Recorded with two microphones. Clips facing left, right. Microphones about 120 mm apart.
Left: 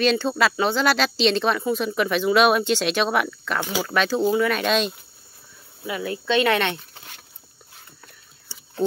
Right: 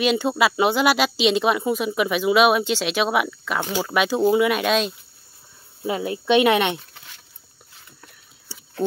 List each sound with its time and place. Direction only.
0.0 s speech: 10° right (ahead or behind)
5.9 s speech: 25° right (ahead or behind)